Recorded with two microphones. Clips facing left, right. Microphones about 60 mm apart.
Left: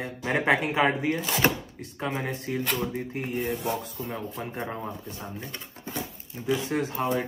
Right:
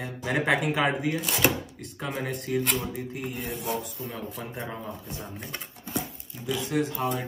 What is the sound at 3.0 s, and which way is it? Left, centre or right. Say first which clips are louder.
Speech: left 3 dB; left.